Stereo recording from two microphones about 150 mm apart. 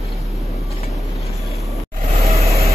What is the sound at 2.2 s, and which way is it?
Vehicle, 45° right (ahead or behind).